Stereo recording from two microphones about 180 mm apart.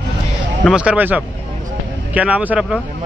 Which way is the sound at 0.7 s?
5° right (ahead or behind).